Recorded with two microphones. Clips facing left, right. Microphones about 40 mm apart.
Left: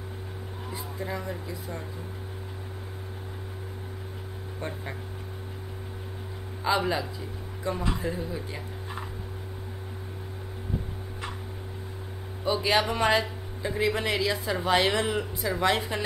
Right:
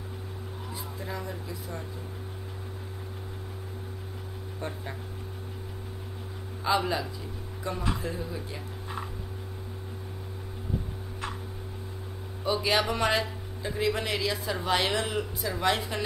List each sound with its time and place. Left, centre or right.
1.0 s speech: left
4.6 s speech: centre
6.6 s speech: centre
7.6 s speech: centre
12.6 s speech: centre